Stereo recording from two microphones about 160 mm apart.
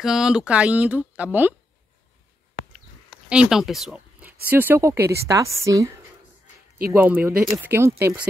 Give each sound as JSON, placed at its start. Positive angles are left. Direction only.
{"t": 0.0, "sound": "speech", "side_deg": -5}
{"t": 3.1, "sound": "a sound", "side_deg": -5}
{"t": 4.5, "sound": "a woman's voice", "side_deg": -10}